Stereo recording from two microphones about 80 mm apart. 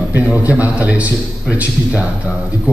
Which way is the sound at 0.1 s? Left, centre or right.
Right.